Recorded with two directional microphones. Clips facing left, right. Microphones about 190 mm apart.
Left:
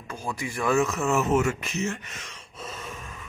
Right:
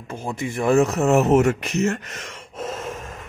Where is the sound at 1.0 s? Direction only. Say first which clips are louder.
Right 7 dB; 65° right (ahead or behind).